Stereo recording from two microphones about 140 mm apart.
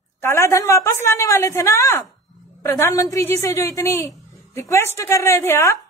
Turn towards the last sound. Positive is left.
turn(degrees=20)  # may be behind; listen again after turning